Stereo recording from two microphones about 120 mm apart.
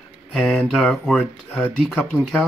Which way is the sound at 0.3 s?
Centre (ahead or behind).